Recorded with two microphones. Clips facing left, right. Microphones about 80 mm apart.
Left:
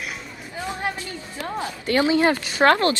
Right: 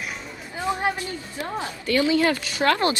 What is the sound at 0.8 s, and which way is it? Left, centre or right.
Speech, right.